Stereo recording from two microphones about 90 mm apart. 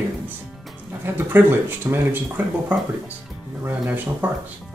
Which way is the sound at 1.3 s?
25° right (ahead or behind).